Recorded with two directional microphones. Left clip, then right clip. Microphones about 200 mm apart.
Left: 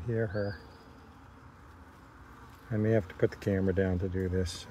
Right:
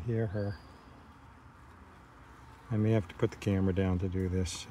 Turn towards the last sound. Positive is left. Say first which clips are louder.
# left 2 dB
turn(degrees=-30)  # may be behind; listen again after turning